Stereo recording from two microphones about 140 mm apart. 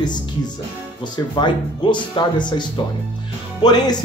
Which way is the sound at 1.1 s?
35° left (ahead or behind).